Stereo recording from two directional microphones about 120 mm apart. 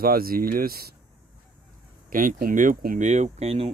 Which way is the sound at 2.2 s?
90° right.